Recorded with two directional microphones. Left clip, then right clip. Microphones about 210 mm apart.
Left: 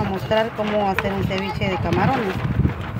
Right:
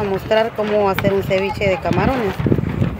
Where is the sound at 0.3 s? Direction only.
55° right (ahead or behind).